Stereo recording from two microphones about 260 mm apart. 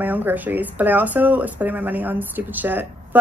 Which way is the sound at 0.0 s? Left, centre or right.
Centre.